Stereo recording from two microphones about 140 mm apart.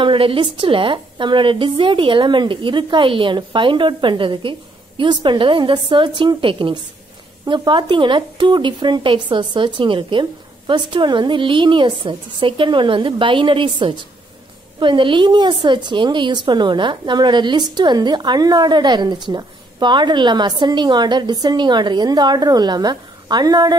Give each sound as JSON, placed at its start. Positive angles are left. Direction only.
{"t": 0.0, "sound": "a woman's voice", "side_deg": -40}